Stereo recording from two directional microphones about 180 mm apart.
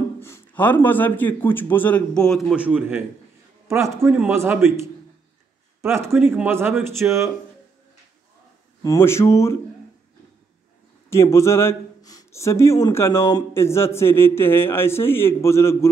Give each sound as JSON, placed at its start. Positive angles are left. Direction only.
{"t": 0.2, "sound": "a man's voice", "side_deg": 10}
{"t": 8.8, "sound": "speech", "side_deg": 15}
{"t": 11.1, "sound": "speech", "side_deg": 15}